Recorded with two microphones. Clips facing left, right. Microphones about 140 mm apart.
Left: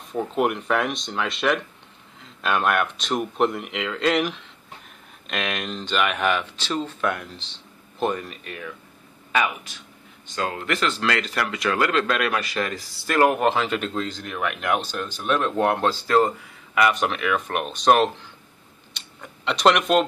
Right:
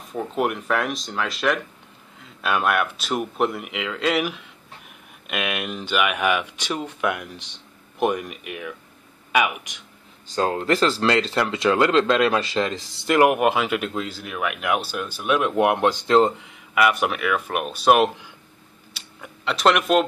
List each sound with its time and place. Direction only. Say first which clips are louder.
0.1 s speech: left 1 dB; centre (ahead or behind); by 9.8 s 15° right (ahead or behind)
10.3 s speech: right 5 dB; 30° right (ahead or behind)
16.7 s speech: right 1 dB; 5° right (ahead or behind)